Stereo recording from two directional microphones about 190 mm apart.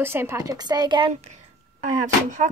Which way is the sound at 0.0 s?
10° right (ahead or behind).